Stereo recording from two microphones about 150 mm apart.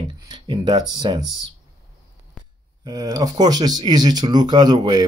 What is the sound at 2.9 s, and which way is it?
Speech, 25° right (ahead or behind).